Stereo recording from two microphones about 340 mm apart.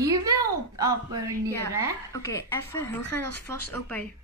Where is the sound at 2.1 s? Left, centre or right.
Centre.